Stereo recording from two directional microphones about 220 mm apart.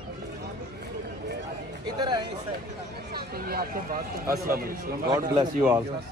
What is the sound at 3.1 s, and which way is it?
A woman's voice, 45° right (ahead or behind).